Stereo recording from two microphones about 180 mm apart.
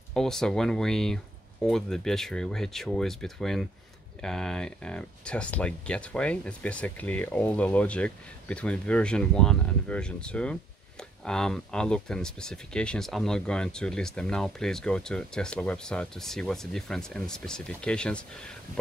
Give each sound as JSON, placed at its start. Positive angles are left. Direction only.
{"t": 0.1, "sound": "speech", "side_deg": 5}